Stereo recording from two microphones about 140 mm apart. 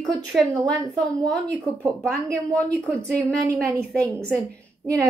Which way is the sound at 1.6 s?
20° right (ahead or behind).